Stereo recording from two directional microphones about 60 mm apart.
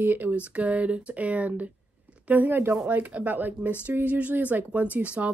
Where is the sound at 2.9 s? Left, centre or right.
Right.